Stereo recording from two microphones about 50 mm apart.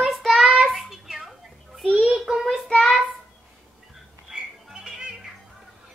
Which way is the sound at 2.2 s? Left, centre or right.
Centre.